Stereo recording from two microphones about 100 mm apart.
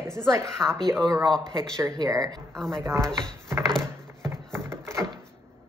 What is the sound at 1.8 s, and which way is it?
Speech, 35° right (ahead or behind).